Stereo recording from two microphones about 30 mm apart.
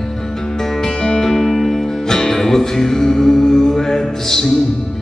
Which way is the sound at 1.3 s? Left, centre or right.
Centre.